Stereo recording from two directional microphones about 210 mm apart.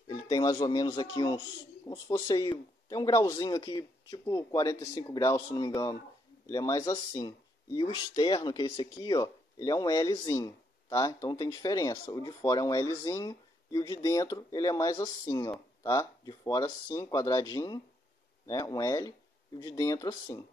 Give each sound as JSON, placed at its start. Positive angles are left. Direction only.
{"t": 0.1, "sound": "speech", "side_deg": 20}